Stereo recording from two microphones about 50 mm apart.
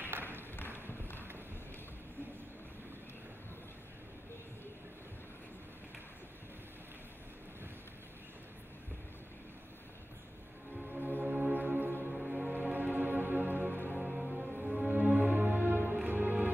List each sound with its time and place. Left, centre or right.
0.0 s a sound: right
0.8 s run: left
10.9 s music: right
12.1 s music: centre
12.5 s music: right
13.9 s music: centre
14.9 s music: right